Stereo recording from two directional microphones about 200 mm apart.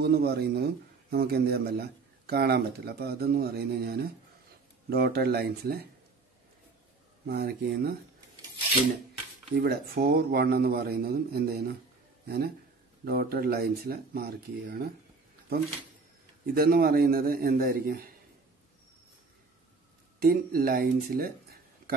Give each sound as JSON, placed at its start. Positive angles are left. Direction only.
{"t": 0.0, "sound": "speech", "side_deg": -50}
{"t": 7.2, "sound": "speech", "side_deg": -50}
{"t": 9.6, "sound": "speech", "side_deg": -50}
{"t": 16.5, "sound": "speech", "side_deg": -50}
{"t": 20.2, "sound": "speech", "side_deg": -50}
{"t": 21.8, "sound": "a sound", "side_deg": -45}